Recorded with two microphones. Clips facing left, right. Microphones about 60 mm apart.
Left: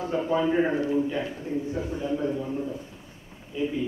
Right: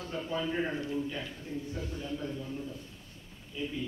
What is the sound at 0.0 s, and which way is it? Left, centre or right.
A man's voice, left.